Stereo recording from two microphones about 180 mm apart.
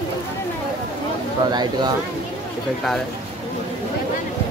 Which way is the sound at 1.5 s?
25° right (ahead or behind).